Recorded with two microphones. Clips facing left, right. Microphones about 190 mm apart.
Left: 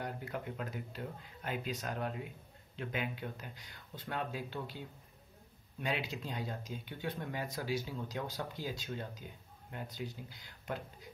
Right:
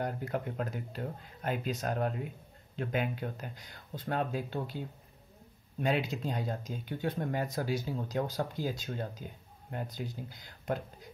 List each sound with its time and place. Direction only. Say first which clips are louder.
0.0 s speech: right 6 dB; 45° right (ahead or behind)